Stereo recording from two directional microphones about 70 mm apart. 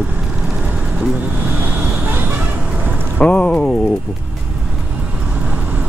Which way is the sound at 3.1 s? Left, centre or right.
Centre.